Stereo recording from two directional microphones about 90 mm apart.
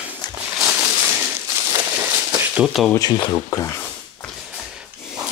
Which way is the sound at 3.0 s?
55° left (ahead or behind).